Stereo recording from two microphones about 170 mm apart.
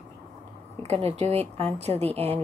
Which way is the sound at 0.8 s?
35° right (ahead or behind).